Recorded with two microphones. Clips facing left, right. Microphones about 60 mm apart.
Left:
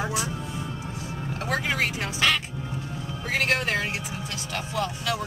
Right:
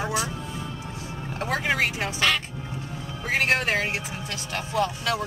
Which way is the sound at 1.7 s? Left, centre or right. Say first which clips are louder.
Right 2 dB; right.